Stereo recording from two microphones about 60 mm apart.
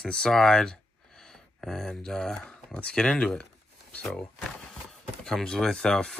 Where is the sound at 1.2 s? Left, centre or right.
Centre.